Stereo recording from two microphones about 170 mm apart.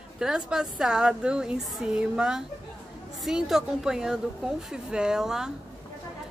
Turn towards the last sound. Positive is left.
turn(degrees=-5)  # may be behind; listen again after turning